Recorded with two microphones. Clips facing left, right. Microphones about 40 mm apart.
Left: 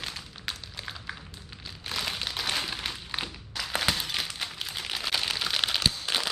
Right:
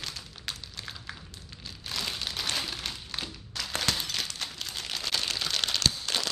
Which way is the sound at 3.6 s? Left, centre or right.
Centre.